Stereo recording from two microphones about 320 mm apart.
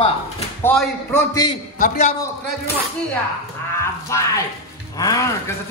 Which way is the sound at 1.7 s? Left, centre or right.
Left.